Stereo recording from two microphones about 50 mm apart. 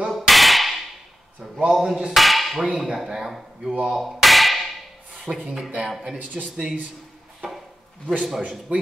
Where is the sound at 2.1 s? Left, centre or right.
Centre.